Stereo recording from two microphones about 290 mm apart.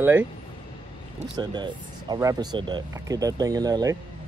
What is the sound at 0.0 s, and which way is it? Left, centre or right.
Speech, centre.